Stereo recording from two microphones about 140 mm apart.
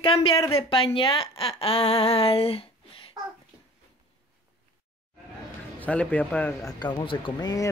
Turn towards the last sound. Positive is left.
turn(degrees=30)  # may be behind; listen again after turning